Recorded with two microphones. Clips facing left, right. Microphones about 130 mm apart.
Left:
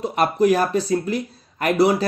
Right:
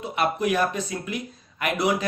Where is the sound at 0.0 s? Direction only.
40° left (ahead or behind).